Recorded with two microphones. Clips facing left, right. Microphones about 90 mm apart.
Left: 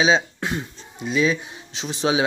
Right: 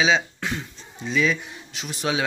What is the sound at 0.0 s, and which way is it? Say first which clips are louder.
Speech: left 2 dB; 20° left (ahead or behind).